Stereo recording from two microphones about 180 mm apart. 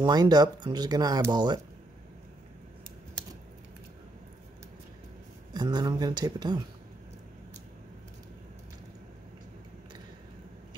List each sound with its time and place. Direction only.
0.0 s speech: 20° right (ahead or behind)
5.5 s speech: 25° right (ahead or behind)